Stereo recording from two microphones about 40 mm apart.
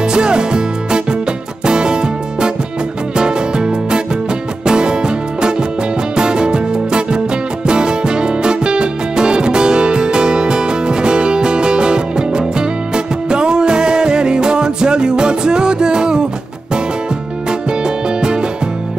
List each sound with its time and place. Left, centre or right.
0.0 s music: right
17.5 s music: right